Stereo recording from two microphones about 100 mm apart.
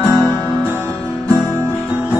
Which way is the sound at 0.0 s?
25° right (ahead or behind).